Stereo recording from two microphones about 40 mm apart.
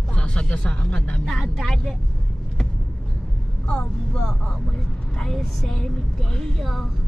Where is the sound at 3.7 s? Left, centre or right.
Left.